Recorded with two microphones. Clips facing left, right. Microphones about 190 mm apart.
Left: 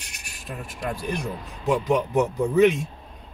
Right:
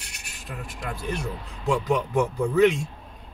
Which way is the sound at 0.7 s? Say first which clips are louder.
Left 3 dB; 20° left (ahead or behind).